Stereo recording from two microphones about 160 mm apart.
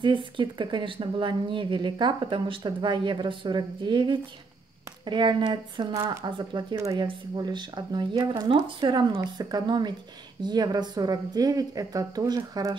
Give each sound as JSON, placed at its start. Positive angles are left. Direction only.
{"t": 0.0, "sound": "speech", "side_deg": -30}